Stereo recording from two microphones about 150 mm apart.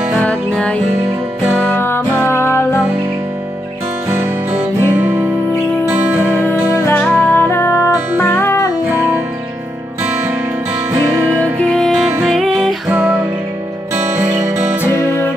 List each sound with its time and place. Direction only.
0.1 s music: 5° left (ahead or behind)
4.1 s music: 15° right (ahead or behind)
6.8 s music: 10° left (ahead or behind)
12.2 s music: centre (ahead or behind)
14.2 s music: 10° right (ahead or behind)
14.9 s music: 15° left (ahead or behind)